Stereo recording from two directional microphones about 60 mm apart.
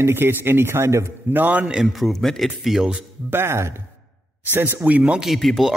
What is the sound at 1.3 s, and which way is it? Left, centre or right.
Speech, right.